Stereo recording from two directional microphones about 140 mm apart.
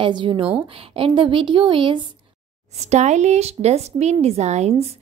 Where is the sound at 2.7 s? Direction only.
55° right (ahead or behind).